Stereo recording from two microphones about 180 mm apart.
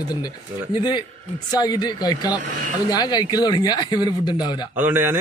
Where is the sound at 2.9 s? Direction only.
20° left (ahead or behind).